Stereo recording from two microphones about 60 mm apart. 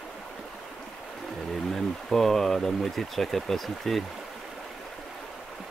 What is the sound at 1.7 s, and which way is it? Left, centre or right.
Speech, centre.